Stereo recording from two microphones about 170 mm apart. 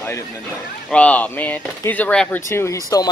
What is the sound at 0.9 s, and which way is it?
Speech, 5° left (ahead or behind).